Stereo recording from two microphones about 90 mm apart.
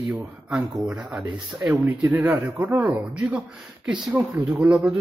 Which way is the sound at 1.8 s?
20° right (ahead or behind).